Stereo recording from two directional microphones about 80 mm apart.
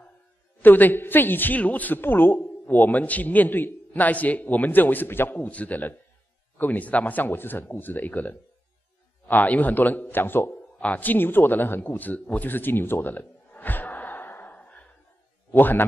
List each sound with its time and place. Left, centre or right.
0.6 s a man's voice: left